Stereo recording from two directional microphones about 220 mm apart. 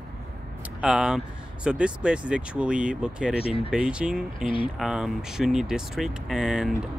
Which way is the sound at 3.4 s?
25° left (ahead or behind).